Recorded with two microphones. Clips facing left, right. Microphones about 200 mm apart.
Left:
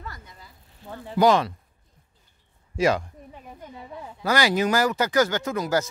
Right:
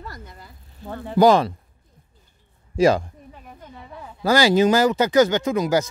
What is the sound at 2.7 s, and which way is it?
Speech, 30° right (ahead or behind).